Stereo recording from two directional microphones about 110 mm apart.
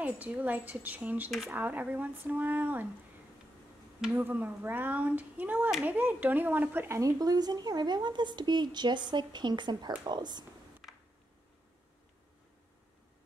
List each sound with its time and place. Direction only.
0.0 s speech: 15° right (ahead or behind)
4.0 s speech: 15° right (ahead or behind)
7.0 s speech: 35° right (ahead or behind)